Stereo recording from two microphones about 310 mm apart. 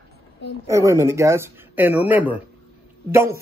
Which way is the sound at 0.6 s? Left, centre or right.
Centre.